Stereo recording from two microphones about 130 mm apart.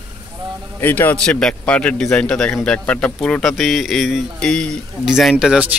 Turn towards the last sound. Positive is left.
turn(degrees=-5)  # may be behind; listen again after turning